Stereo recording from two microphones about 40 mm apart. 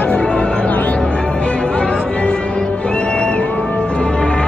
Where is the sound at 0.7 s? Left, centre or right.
Left.